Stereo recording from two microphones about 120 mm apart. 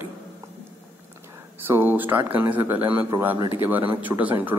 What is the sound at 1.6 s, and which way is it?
A man's voice, 15° right (ahead or behind).